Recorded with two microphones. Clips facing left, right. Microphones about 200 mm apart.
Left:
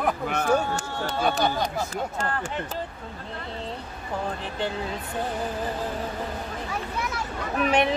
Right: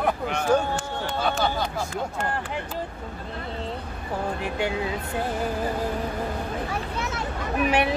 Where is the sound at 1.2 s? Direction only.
15° left (ahead or behind).